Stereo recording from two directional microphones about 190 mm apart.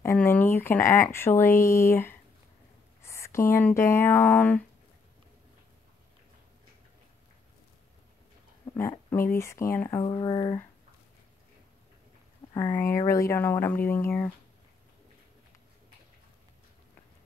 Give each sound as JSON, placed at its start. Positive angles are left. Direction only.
{"t": 0.0, "sound": "speech", "side_deg": 10}
{"t": 8.7, "sound": "speech", "side_deg": 10}
{"t": 10.0, "sound": "speech", "side_deg": 25}
{"t": 12.5, "sound": "speech", "side_deg": 15}